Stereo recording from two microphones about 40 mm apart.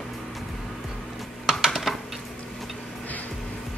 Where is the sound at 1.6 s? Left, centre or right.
Centre.